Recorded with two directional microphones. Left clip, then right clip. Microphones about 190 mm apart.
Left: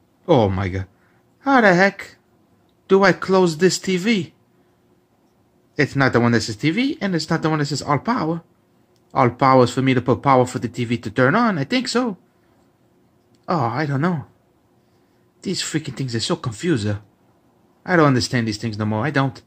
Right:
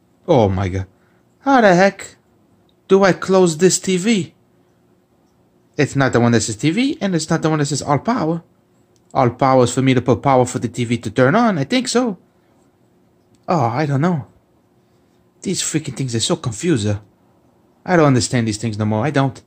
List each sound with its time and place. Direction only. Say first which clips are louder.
0.2 s speech: right 2 dB; centre (ahead or behind)
5.8 s speech: right 2 dB; centre (ahead or behind)
13.5 s speech: right 4 dB; 5° right (ahead or behind)
15.4 s speech: right 3 dB; centre (ahead or behind)